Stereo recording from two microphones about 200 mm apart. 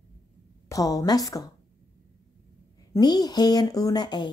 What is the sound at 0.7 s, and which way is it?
Speech, 15° left (ahead or behind).